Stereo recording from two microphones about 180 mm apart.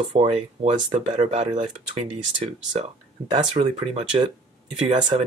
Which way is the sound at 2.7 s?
35° right (ahead or behind).